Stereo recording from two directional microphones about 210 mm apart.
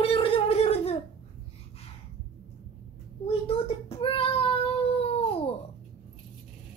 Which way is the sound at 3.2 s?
25° left (ahead or behind).